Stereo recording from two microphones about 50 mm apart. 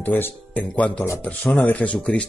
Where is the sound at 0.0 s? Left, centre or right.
Left.